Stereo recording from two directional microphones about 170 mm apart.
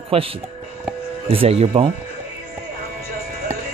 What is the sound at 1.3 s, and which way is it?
Speech, 35° right (ahead or behind).